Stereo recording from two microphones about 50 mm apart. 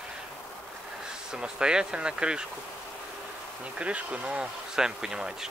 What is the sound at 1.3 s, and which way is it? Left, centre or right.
Speech, centre.